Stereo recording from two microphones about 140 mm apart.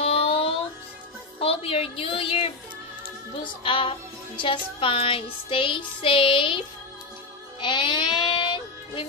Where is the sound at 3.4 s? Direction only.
35° left (ahead or behind).